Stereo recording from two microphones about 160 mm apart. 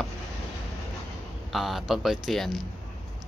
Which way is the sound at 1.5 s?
Centre (ahead or behind).